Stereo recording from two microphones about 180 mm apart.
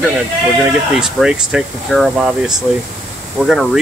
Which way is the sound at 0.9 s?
5° right (ahead or behind).